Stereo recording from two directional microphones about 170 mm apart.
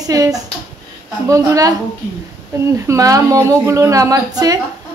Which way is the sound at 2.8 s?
20° right (ahead or behind).